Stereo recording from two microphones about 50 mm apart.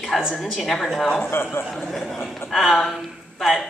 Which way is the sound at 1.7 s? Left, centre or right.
Centre.